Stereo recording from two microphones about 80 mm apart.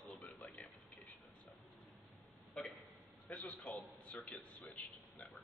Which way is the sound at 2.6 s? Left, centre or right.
Centre.